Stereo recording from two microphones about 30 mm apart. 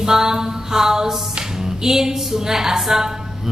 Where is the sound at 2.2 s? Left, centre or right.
Centre.